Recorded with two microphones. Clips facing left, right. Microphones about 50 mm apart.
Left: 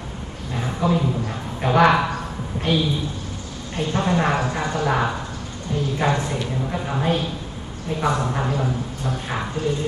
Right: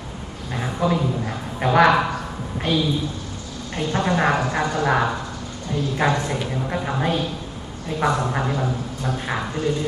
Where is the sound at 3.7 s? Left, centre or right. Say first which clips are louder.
Even; right.